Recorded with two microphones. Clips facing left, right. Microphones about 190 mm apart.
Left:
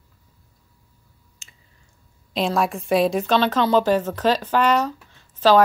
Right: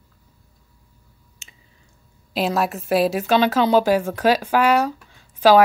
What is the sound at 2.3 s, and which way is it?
Speech, 5° right (ahead or behind).